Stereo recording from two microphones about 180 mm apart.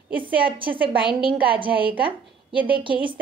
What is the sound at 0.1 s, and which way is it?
A woman's voice, 30° right (ahead or behind).